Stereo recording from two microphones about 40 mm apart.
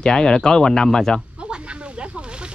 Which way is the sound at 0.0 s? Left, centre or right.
Left.